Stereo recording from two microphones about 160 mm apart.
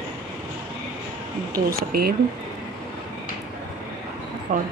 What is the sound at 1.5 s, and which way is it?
Speech, 70° right (ahead or behind).